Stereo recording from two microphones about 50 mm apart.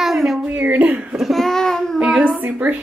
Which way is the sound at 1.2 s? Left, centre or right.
Centre.